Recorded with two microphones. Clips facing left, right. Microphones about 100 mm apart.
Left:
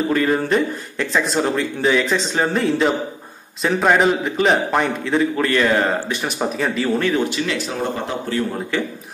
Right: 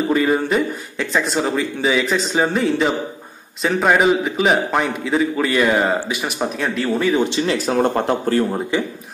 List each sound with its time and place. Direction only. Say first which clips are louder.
0.1 s speech: right 2 dB; 10° right (ahead or behind)
0.6 s a man's voice: even; centre (ahead or behind)
7.2 s speech: right 4 dB; 30° right (ahead or behind)
8.7 s speech: right 1 dB; 15° right (ahead or behind)